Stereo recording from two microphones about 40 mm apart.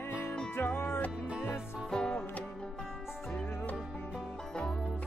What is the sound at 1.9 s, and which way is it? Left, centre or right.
Music, left.